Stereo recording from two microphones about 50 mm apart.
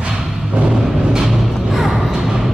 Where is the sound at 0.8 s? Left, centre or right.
Centre.